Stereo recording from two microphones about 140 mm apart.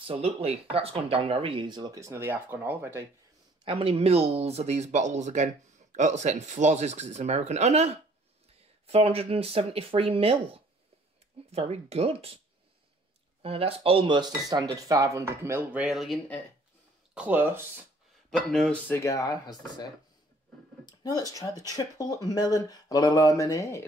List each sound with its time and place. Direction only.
0.0 s speech: 45° right (ahead or behind); by 3.1 s 15° right (ahead or behind)
3.6 s speech: 40° right (ahead or behind)
13.4 s speech: 45° right (ahead or behind); by 17.6 s 15° right (ahead or behind)
18.3 s speech: centre (ahead or behind)
18.9 s speech: 20° left (ahead or behind)